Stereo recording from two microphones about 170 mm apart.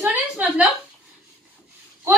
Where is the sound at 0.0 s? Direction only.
10° right (ahead or behind).